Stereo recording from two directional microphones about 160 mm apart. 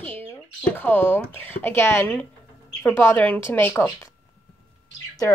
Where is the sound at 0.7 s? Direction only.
10° left (ahead or behind).